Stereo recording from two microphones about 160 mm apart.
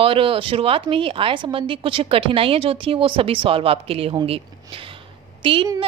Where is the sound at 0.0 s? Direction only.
35° right (ahead or behind).